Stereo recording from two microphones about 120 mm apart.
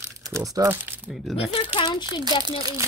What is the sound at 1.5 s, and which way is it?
Speech, 50° left (ahead or behind).